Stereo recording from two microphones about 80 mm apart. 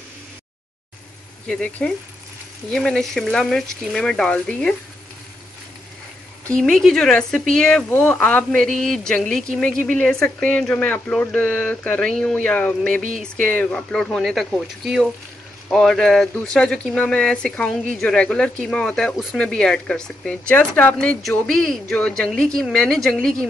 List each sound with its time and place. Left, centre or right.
1.5 s speech: centre
6.5 s speech: centre
12.1 s speech: centre
20.5 s speech: centre
21.5 s speech: centre